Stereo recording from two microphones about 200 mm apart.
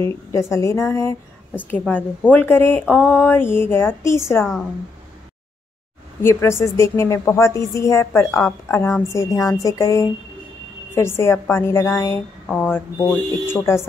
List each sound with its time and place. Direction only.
0.0 s a woman's voice: 15° left (ahead or behind)
6.2 s a woman's voice: 15° left (ahead or behind)